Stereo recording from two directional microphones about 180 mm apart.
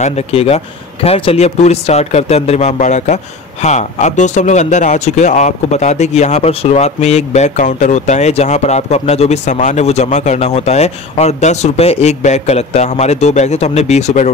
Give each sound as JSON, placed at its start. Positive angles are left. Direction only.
{"t": 0.0, "sound": "speech", "side_deg": 35}